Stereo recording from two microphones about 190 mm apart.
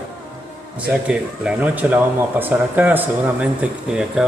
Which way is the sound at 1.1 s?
5° right (ahead or behind).